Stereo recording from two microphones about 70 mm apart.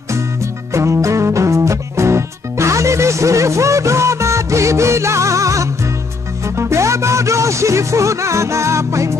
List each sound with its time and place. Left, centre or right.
0.1 s music: right